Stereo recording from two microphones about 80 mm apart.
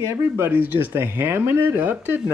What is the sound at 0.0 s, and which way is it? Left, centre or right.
Speech, right.